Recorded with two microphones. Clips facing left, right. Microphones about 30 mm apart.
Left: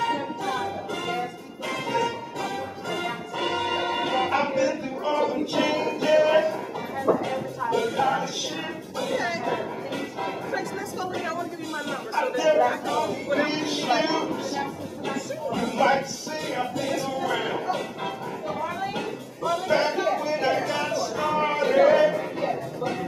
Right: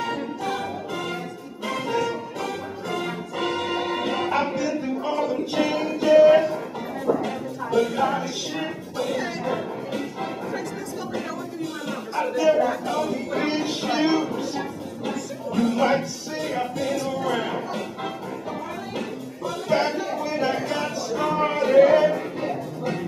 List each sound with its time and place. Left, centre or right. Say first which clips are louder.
0.4 s music: even; centre
5.1 s music: left 2 dB; centre
5.5 s music: right 1 dB; centre
11.9 s speech: even; centre
17.1 s a sound: right 1 dB; centre
18.9 s music: even; centre